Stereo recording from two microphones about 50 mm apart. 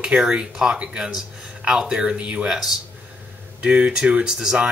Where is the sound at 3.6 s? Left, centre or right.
Centre.